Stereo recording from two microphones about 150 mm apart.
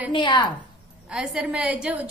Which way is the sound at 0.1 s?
30° left (ahead or behind).